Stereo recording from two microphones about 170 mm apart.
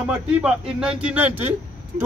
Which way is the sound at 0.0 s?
5° right (ahead or behind).